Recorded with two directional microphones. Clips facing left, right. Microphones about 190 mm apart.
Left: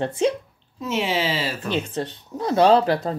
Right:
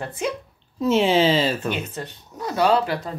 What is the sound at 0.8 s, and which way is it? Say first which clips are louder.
Speech: right 6 dB; 30° right (ahead or behind).